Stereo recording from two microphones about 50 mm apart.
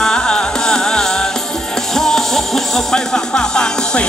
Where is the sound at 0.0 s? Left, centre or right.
Centre.